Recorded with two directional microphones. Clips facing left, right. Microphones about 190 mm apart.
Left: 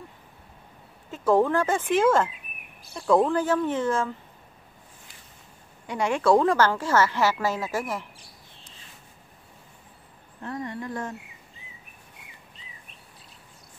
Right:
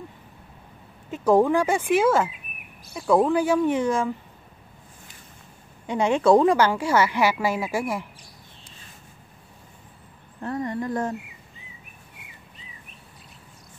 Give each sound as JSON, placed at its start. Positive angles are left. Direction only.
{"t": 1.1, "sound": "a woman's voice", "side_deg": -15}
{"t": 5.9, "sound": "a woman's voice", "side_deg": -25}
{"t": 10.4, "sound": "speech", "side_deg": -40}